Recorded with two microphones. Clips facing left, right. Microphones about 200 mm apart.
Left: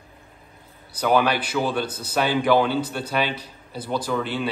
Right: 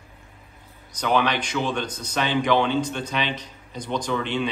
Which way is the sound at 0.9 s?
10° left (ahead or behind).